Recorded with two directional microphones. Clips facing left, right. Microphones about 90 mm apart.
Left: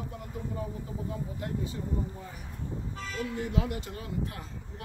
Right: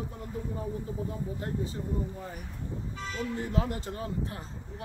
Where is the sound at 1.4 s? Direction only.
35° right (ahead or behind).